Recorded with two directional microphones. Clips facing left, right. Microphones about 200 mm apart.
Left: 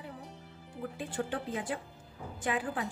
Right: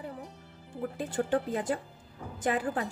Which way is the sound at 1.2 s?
40° right (ahead or behind).